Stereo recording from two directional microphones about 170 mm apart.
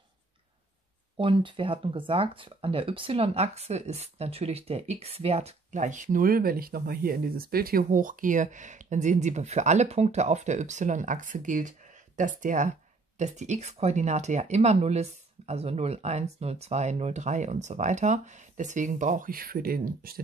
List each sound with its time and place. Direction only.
1.1 s speech: 30° right (ahead or behind); by 20.2 s 60° right (ahead or behind)